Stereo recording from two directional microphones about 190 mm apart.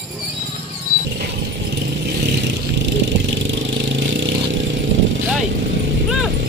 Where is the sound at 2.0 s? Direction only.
60° right (ahead or behind).